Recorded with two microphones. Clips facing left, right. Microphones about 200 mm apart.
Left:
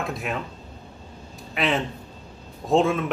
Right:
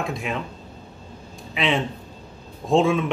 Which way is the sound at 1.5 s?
Centre (ahead or behind).